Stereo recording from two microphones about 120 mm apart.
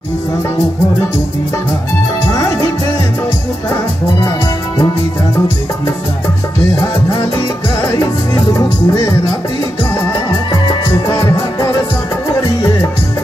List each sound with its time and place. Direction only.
8.5 s music: 25° left (ahead or behind)
10.5 s music: 40° left (ahead or behind)